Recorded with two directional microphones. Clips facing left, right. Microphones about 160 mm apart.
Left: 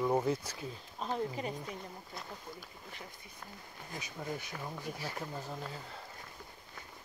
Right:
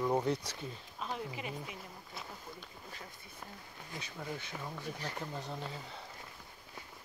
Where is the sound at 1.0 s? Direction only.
35° left (ahead or behind).